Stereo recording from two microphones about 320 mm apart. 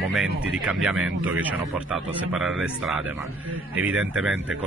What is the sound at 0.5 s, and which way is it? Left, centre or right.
Speech, centre.